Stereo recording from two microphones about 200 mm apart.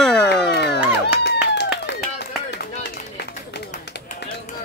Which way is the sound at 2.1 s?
55° left (ahead or behind).